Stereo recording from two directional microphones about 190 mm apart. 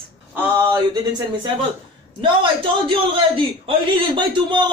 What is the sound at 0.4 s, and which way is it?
Speech, 15° right (ahead or behind).